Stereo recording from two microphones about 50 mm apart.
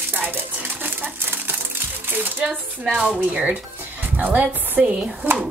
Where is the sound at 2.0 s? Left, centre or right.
Right.